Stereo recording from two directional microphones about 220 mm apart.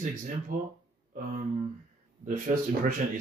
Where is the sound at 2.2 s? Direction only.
35° right (ahead or behind).